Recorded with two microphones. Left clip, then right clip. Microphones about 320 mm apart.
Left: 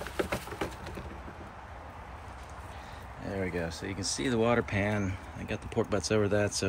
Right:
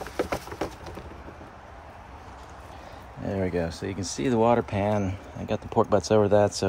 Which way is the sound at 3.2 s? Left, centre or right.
Right.